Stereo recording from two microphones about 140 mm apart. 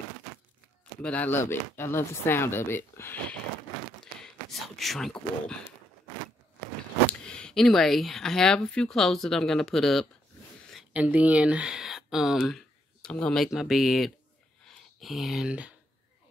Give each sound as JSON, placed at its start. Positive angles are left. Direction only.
{"t": 1.0, "sound": "speech", "side_deg": 10}
{"t": 4.0, "sound": "speech", "side_deg": 0}
{"t": 7.1, "sound": "speech", "side_deg": 5}